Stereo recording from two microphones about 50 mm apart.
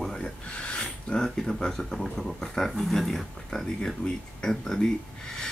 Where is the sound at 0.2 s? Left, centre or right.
Left.